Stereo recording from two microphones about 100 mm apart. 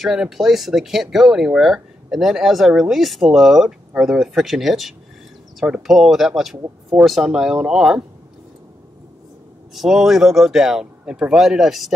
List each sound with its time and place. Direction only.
0.0 s speech: 5° right (ahead or behind)
9.8 s speech: 5° right (ahead or behind)